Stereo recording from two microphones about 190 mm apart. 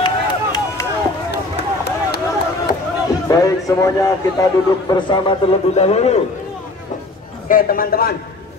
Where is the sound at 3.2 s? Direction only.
20° left (ahead or behind); by 6.2 s 35° left (ahead or behind).